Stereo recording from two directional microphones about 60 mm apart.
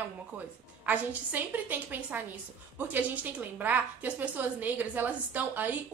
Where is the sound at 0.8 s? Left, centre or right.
Right.